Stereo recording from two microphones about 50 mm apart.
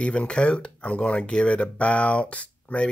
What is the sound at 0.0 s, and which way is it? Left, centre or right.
Speech, left.